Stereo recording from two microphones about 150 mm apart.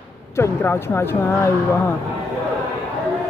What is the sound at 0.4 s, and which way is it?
Speech, 15° left (ahead or behind).